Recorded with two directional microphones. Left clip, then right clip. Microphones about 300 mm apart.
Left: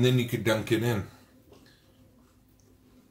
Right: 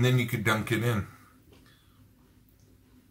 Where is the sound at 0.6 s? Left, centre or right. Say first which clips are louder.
Left 2 dB; centre.